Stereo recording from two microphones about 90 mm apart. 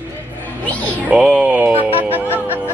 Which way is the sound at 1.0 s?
10° right (ahead or behind).